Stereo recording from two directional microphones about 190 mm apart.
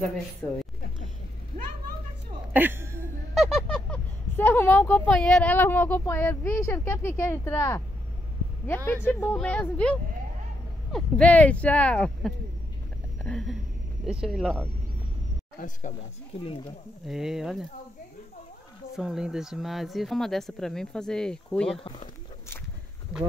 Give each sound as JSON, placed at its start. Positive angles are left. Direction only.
{"t": 2.5, "sound": "speech", "side_deg": -10}
{"t": 3.3, "sound": "speech", "side_deg": 0}
{"t": 16.3, "sound": "speech", "side_deg": 30}
{"t": 17.0, "sound": "speech", "side_deg": 0}
{"t": 18.9, "sound": "speech", "side_deg": -5}